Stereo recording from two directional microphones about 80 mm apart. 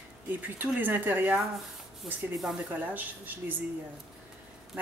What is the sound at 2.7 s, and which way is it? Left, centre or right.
Speech, right.